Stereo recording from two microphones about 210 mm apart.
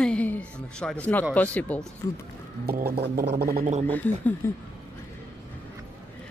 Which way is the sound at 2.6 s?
45° right (ahead or behind).